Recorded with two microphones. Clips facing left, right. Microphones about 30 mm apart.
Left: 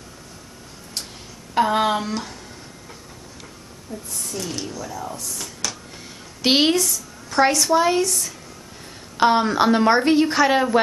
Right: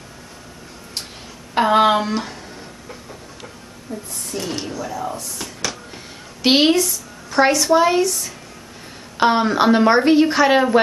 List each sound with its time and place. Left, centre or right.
1.5 s speech: right
3.9 s speech: right
5.4 s a sound: centre
6.4 s a woman's voice: centre